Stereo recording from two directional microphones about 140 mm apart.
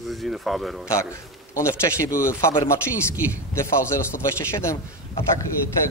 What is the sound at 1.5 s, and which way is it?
A man's voice, 20° left (ahead or behind).